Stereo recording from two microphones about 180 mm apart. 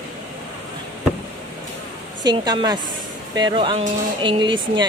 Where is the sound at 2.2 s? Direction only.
20° right (ahead or behind).